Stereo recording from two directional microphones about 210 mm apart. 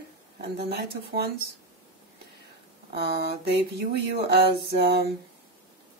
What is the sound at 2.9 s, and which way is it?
A woman's voice, 50° right (ahead or behind).